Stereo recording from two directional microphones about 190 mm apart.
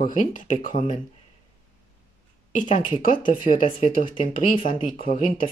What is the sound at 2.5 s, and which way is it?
Speech, 40° left (ahead or behind).